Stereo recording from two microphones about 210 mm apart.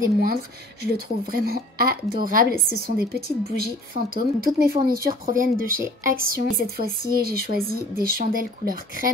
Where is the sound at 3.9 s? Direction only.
45° right (ahead or behind).